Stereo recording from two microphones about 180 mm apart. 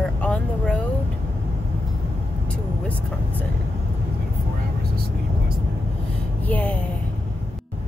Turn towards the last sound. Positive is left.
turn(degrees=10)  # may be behind; listen again after turning